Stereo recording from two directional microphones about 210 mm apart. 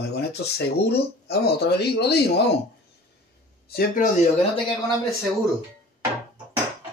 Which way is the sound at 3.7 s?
45° left (ahead or behind).